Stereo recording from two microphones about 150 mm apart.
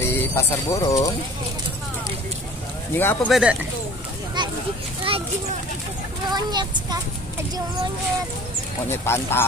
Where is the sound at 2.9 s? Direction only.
15° left (ahead or behind).